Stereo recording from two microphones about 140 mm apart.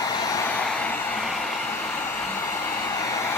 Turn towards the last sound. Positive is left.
turn(degrees=20)  # may be behind; listen again after turning